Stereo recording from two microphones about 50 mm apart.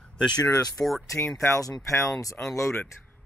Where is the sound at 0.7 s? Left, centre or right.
Centre.